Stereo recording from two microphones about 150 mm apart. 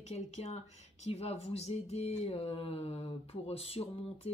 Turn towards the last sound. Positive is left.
turn(degrees=40)  # may be behind; listen again after turning